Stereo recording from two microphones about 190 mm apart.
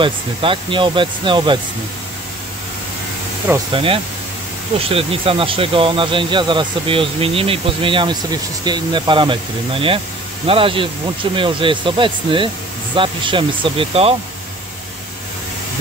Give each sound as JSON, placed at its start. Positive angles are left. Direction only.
{"t": 0.0, "sound": "speech", "side_deg": -25}
{"t": 3.7, "sound": "speech", "side_deg": -30}